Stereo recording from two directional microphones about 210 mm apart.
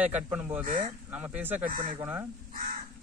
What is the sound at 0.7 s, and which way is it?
Speech, 40° right (ahead or behind).